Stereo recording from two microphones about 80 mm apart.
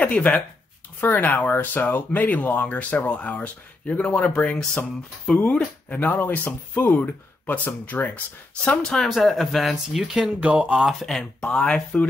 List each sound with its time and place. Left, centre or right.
0.0 s speech: centre
8.6 s speech: centre
10.4 s speech: centre
10.8 s speech: centre